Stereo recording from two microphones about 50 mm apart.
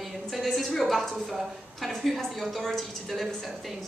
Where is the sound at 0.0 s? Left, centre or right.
Centre.